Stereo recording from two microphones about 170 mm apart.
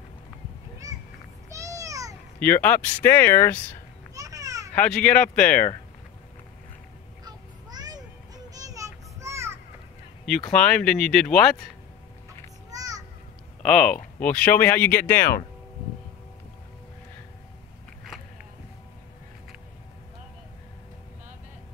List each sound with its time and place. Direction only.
0.8 s a sound: 20° right (ahead or behind)
2.4 s speech: 10° left (ahead or behind)
4.1 s children playing: 20° right (ahead or behind)
4.7 s speech: 10° left (ahead or behind)
7.2 s music: 25° right (ahead or behind)
8.5 s children playing: 20° right (ahead or behind)
10.5 s speech: 5° left (ahead or behind)
12.7 s a sound: 20° right (ahead or behind)
13.6 s speech: 5° left (ahead or behind)